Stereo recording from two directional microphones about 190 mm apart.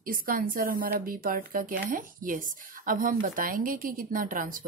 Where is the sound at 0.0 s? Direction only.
50° right (ahead or behind).